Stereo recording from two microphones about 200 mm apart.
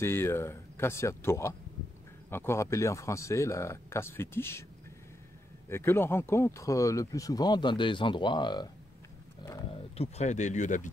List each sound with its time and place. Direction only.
0.0 s speech: 10° left (ahead or behind)
5.7 s speech: 10° left (ahead or behind)
9.4 s a sound: 15° left (ahead or behind)
9.9 s speech: 35° left (ahead or behind)